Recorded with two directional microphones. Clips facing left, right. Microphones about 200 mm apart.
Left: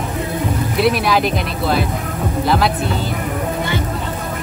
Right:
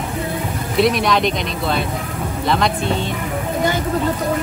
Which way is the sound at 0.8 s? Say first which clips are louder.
Right 1 dB; 5° left (ahead or behind).